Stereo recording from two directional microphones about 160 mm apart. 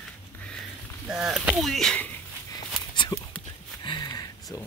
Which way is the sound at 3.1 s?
25° left (ahead or behind).